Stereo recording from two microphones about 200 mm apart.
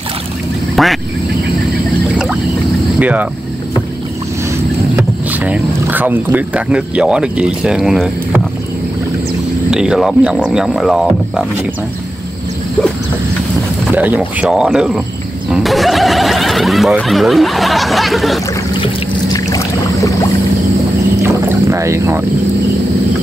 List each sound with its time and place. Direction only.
0.8 s quack: centre (ahead or behind)
3.0 s speech: 5° right (ahead or behind)
4.9 s speech: 10° right (ahead or behind)
9.7 s speech: 5° right (ahead or behind)
13.9 s speech: 10° right (ahead or behind)
19.3 s boat: 15° left (ahead or behind)
21.2 s boat: 15° right (ahead or behind)